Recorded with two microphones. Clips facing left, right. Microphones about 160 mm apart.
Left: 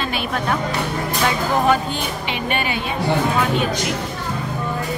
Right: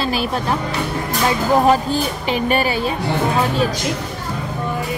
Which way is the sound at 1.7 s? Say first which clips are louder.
Right 3 dB; 35° right (ahead or behind).